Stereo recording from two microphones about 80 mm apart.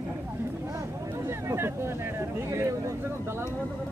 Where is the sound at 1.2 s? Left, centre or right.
Right.